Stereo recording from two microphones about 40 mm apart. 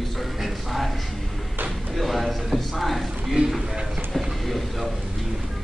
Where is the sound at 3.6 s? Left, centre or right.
Centre.